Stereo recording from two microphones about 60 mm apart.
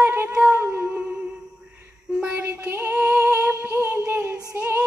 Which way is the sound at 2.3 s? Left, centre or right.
Right.